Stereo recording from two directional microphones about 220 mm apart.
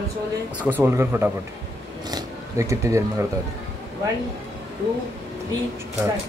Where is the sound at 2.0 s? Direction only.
15° right (ahead or behind).